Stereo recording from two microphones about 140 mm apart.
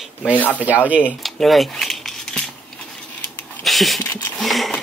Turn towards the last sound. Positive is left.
turn(degrees=0)  # may be behind; listen again after turning